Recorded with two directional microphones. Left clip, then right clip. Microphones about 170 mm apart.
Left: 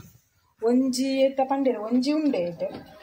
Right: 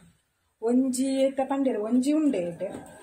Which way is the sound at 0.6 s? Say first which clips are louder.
Left 2 dB; 5° right (ahead or behind).